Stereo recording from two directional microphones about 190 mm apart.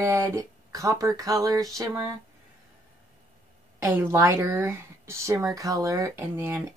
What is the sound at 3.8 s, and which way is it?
Speech, 15° right (ahead or behind).